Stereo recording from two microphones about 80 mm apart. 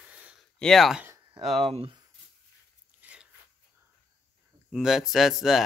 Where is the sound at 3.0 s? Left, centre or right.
Centre.